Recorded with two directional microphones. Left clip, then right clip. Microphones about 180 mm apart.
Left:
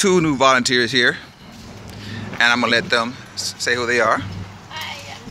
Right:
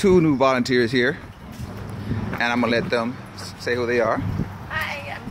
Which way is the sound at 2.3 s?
Centre (ahead or behind).